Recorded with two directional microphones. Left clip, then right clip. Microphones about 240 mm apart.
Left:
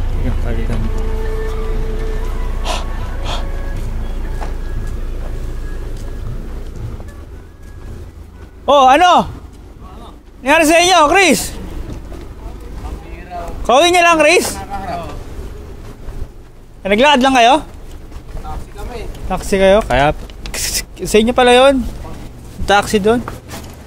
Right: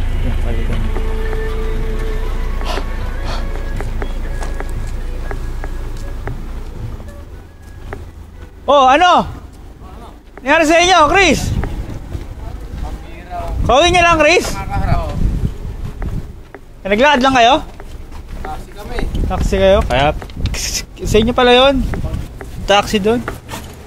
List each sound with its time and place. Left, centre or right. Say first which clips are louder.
2.7 s a sound: left 1 dB; centre
8.6 s speech: left 1 dB; centre
10.4 s speech: left 1 dB; centre
13.7 s speech: left 1 dB; centre
16.8 s speech: left 1 dB; centre
19.2 s speech: left 1 dB; centre